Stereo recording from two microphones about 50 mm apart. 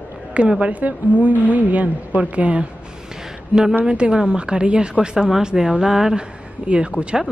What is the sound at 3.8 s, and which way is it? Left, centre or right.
Speech, centre.